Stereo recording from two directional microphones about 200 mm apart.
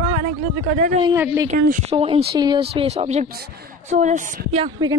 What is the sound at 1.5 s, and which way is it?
A woman's voice, 35° right (ahead or behind).